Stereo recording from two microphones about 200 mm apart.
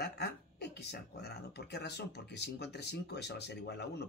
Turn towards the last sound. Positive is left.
turn(degrees=55)  # may be behind; listen again after turning